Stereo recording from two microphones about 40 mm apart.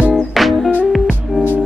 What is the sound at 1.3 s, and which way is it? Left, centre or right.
Music, left.